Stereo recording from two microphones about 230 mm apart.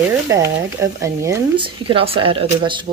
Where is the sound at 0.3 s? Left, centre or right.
Centre.